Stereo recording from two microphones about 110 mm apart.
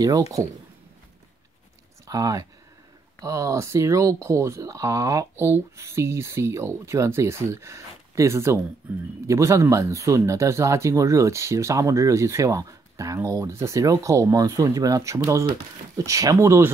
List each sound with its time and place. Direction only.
0.0 s speech: 30° right (ahead or behind)
2.0 s speech: 35° right (ahead or behind)